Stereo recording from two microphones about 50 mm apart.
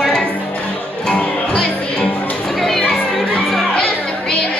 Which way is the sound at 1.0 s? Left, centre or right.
Left.